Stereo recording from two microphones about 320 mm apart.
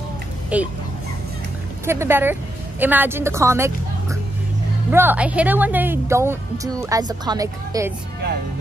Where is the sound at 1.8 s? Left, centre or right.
Centre.